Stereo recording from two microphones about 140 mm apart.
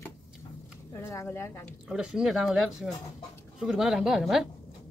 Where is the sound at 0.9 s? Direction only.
20° left (ahead or behind).